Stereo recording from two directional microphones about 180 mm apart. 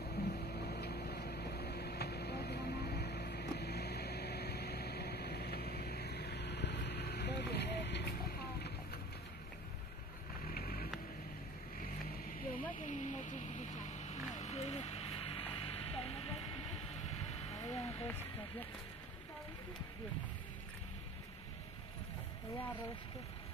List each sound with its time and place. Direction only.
0.1 s vehicle: 65° left (ahead or behind)
10.4 s vehicle: 55° left (ahead or behind); by 17.0 s 35° left (ahead or behind)
17.5 s a sound: 35° left (ahead or behind)